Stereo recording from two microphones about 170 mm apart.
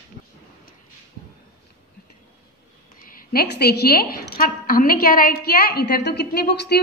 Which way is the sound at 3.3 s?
65° left (ahead or behind).